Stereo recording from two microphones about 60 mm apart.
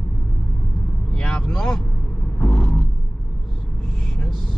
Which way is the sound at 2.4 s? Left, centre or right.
Centre.